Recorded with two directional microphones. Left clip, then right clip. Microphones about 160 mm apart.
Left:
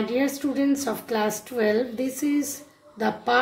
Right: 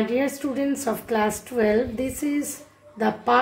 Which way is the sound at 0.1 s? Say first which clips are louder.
Right 1 dB; 10° right (ahead or behind).